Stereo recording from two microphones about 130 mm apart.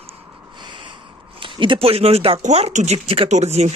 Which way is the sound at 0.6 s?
40° right (ahead or behind).